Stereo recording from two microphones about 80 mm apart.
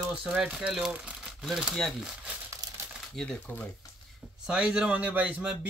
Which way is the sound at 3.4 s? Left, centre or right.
Left.